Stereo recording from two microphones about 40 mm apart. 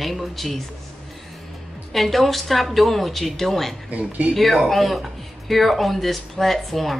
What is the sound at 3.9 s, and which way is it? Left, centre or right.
Speech, right.